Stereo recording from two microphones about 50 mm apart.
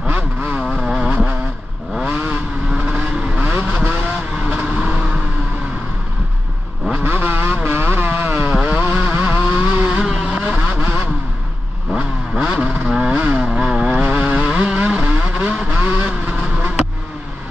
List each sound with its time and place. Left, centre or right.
0.0 s vehicle: right
0.7 s vehicle: centre
1.1 s vehicle: right
2.7 s vehicle: centre
3.4 s vehicle: right
7.0 s vehicle: right
9.8 s vehicle: centre
10.7 s vehicle: right
12.4 s vehicle: centre
13.2 s motorcycle: right
13.6 s vehicle: centre
13.8 s vehicle: right
15.8 s vehicle: right